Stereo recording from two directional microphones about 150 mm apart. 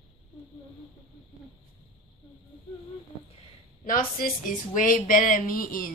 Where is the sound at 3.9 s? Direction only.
75° left (ahead or behind).